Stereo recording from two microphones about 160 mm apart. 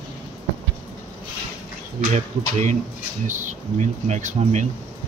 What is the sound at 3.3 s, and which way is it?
Speech, 50° right (ahead or behind).